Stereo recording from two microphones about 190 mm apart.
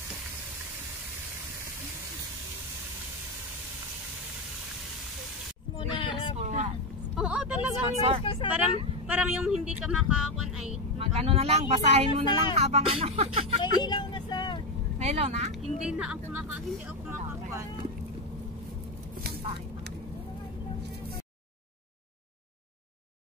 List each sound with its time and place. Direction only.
5.8 s a sound: 25° left (ahead or behind)
6.4 s vehicle: 40° right (ahead or behind)
7.2 s vehicle: 5° right (ahead or behind)
7.9 s speech: 35° right (ahead or behind)
8.2 s speech: 30° left (ahead or behind)
9.0 s speech: 5° right (ahead or behind)
11.0 s speech: 30° right (ahead or behind)
13.6 s vehicle: 25° left (ahead or behind)
15.0 s speech: 35° right (ahead or behind)
15.6 s speech: 5° right (ahead or behind)
17.3 s vehicle: 15° right (ahead or behind)